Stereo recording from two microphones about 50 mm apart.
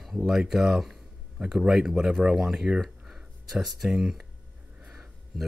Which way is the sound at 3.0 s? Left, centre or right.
Centre.